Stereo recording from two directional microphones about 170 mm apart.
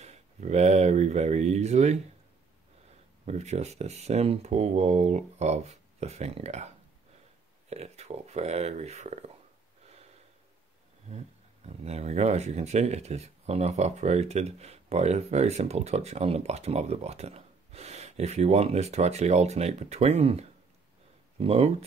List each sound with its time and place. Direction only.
0.0 s speech: 40° right (ahead or behind)
3.3 s speech: 40° right (ahead or behind)
7.7 s speech: 40° right (ahead or behind)
11.1 s speech: 40° right (ahead or behind)